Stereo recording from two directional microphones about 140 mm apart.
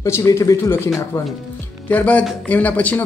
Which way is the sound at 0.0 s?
20° left (ahead or behind).